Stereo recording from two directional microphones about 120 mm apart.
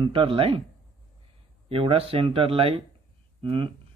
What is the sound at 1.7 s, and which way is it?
Speech, 50° right (ahead or behind).